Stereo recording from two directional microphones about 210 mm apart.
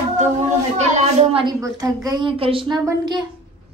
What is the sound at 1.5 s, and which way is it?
A woman's voice, 15° right (ahead or behind).